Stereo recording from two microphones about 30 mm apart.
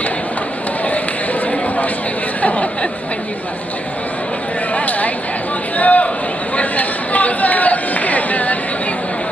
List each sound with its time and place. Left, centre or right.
2.4 s chatter: left
4.7 s a sound: left
6.5 s chatter: left